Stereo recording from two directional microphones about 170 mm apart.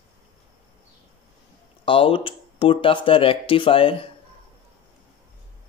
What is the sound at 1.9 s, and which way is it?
Speech, 30° left (ahead or behind).